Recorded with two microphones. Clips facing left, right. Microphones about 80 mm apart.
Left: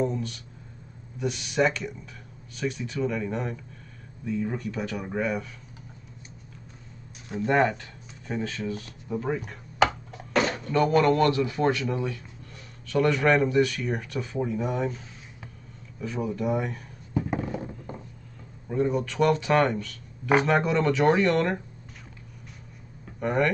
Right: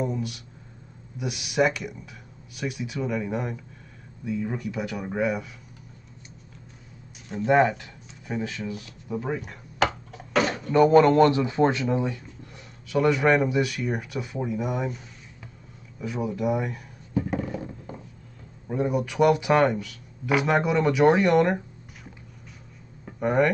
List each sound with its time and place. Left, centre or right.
0.0 s speech: centre
7.2 s speech: centre
9.8 s a sound: centre
10.7 s a man's voice: right
12.8 s speech: centre
17.3 s a sound: centre
18.7 s speech: centre
23.1 s speech: centre